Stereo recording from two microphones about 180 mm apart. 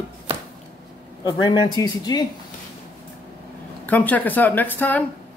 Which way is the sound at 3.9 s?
10° left (ahead or behind).